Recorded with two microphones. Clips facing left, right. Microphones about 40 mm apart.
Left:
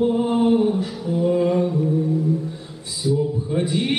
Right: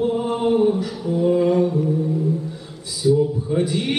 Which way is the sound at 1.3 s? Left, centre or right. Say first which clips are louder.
Right 2 dB; left.